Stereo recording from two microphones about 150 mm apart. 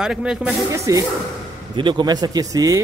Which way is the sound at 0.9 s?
20° right (ahead or behind).